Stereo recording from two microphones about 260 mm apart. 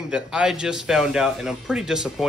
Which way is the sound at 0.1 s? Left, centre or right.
Centre.